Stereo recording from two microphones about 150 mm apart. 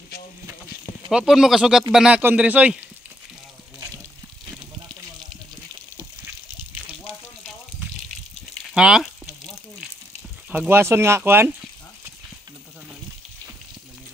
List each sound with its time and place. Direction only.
1.1 s speech: 5° right (ahead or behind)
4.5 s snake: 5° right (ahead or behind)
8.7 s speech: 5° right (ahead or behind)
10.5 s speech: 15° right (ahead or behind)